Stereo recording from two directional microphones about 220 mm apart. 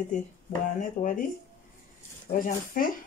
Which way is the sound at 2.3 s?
40° left (ahead or behind).